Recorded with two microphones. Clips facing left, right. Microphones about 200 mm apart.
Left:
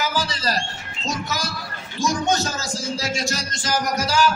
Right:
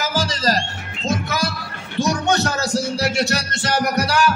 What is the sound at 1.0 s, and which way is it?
Music, 55° right (ahead or behind).